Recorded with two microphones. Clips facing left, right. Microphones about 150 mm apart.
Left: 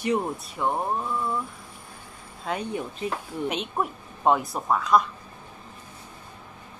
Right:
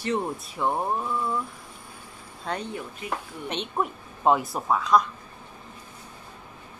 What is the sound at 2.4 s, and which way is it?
A woman's voice, 5° left (ahead or behind).